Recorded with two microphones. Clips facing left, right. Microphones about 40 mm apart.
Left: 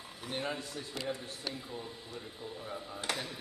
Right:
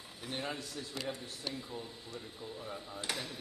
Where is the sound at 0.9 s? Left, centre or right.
Centre.